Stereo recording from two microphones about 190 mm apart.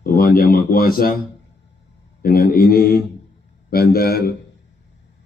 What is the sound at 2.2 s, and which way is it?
A man's voice, 50° left (ahead or behind).